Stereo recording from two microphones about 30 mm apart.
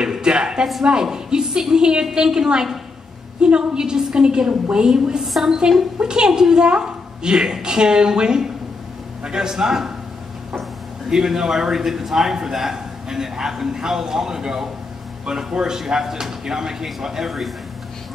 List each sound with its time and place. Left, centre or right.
0.0 s a sound: right
1.1 s a woman's voice: right
5.2 s a woman's voice: centre
5.9 s a woman's voice: right
11.1 s a woman's voice: centre